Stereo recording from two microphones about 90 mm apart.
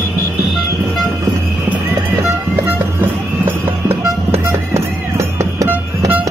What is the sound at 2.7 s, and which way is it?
Music, 20° right (ahead or behind).